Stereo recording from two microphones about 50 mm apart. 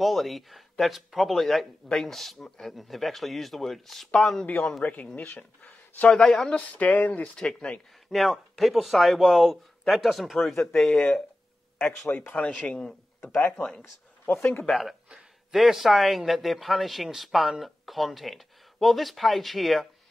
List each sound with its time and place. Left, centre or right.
0.0 s speech: centre
4.8 s speech: left
6.0 s speech: centre
6.7 s speech: left
7.3 s speech: centre
8.1 s speech: centre
10.5 s speech: centre
12.3 s speech: centre
14.2 s speech: left
14.7 s speech: centre